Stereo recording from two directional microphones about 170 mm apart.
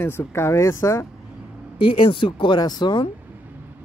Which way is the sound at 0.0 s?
15° left (ahead or behind).